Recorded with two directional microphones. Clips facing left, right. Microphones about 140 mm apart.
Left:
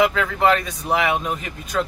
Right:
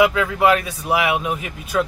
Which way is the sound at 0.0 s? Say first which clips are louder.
Right 2 dB; 10° right (ahead or behind).